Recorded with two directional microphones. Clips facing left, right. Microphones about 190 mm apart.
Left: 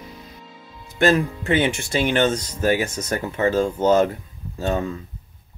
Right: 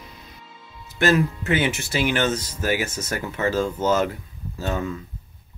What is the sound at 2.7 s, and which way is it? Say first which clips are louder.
Speech: left 1 dB; 5° right (ahead or behind).